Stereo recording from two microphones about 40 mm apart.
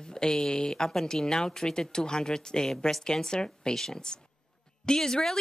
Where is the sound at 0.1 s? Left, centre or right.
Centre.